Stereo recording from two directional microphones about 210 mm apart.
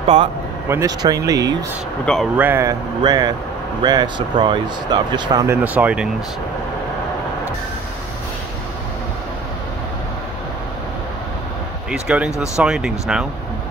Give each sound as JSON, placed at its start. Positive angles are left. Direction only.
{"t": 0.0, "sound": "a man's voice", "side_deg": -35}
{"t": 0.7, "sound": "speech", "side_deg": -15}
{"t": 2.0, "sound": "speech", "side_deg": -5}
{"t": 11.9, "sound": "speech", "side_deg": -5}